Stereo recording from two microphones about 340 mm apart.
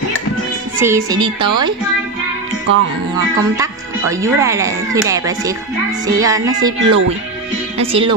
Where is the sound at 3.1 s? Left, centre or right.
Centre.